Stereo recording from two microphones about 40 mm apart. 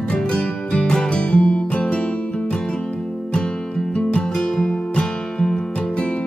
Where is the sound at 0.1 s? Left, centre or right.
Left.